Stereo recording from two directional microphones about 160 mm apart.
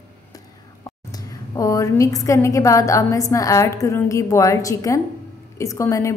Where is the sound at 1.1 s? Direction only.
20° left (ahead or behind).